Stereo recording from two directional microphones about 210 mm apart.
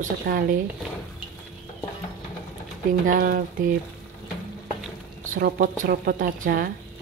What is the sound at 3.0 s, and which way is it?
Speech, 45° right (ahead or behind).